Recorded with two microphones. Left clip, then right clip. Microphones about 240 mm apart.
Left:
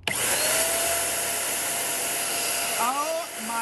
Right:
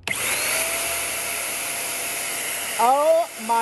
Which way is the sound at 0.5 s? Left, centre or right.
Left.